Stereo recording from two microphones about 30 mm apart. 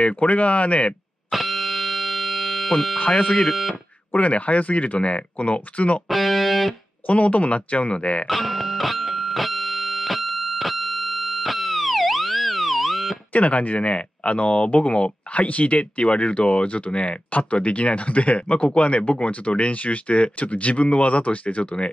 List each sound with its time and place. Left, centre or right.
0.0 s speech: left
1.3 s a sound: centre
4.1 s speech: left
6.0 s speech: centre
7.1 s speech: left
8.3 s music: centre
13.3 s speech: left